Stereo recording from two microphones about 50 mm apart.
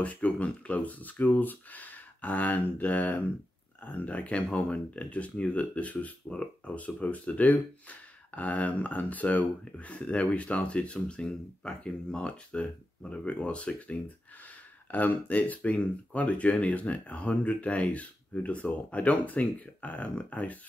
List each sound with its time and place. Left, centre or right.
0.0 s speech: left
6.2 s speech: centre